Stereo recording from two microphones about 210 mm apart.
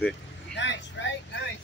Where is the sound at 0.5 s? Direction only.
55° left (ahead or behind).